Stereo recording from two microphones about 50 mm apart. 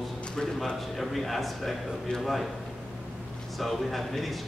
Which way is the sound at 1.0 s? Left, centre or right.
Centre.